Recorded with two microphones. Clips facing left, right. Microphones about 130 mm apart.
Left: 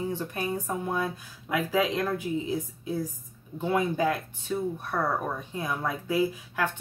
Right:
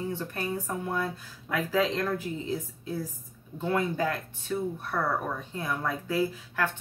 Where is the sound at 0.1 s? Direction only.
15° left (ahead or behind).